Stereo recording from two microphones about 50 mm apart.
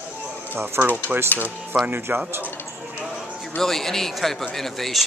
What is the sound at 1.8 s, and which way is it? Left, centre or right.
Speech, right.